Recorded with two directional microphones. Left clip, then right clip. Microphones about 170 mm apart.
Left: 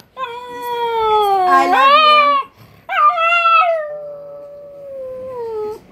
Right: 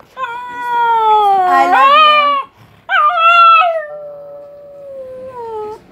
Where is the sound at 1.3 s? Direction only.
Centre (ahead or behind).